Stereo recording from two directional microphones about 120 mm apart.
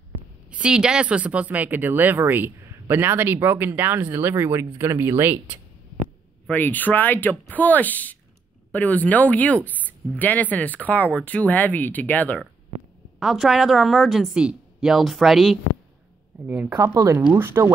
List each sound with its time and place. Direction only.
0.5 s speech: 10° right (ahead or behind)
6.5 s speech: 15° left (ahead or behind)
13.2 s a woman's voice: 5° right (ahead or behind)
16.4 s speech: 15° right (ahead or behind)